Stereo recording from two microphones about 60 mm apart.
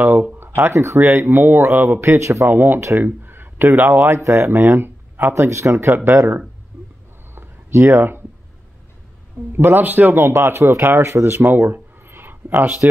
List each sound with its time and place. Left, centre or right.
0.0 s a man's voice: right
2.0 s speech: right
2.4 s a man's voice: right
4.1 s speech: right
5.3 s speech: right
7.7 s speech: right
9.5 s a man's voice: right
11.7 s a sound: right